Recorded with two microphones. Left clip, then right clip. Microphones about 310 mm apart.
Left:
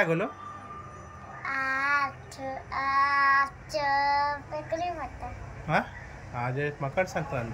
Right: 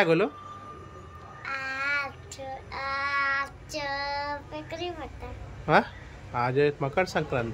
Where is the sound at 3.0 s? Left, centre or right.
Centre.